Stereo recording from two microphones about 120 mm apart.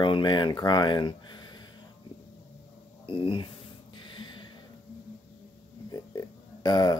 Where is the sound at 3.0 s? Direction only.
45° left (ahead or behind).